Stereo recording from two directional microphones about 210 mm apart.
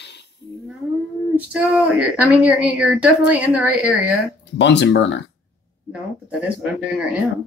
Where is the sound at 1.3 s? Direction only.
5° right (ahead or behind).